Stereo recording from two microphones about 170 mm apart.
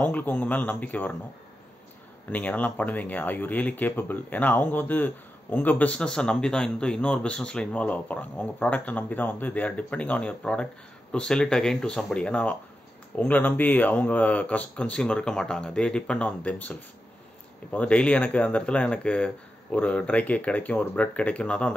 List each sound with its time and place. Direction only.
0.0 s speech: 10° left (ahead or behind)
2.3 s speech: 10° left (ahead or behind)